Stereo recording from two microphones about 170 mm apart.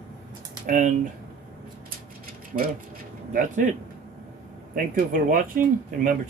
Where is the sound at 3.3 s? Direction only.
50° right (ahead or behind).